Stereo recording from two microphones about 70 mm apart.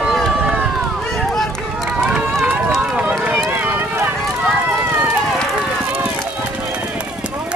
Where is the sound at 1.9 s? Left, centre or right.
Centre.